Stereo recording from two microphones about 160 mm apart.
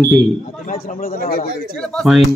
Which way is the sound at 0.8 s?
65° left (ahead or behind).